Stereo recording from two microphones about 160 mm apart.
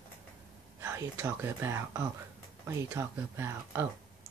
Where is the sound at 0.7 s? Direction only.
15° right (ahead or behind).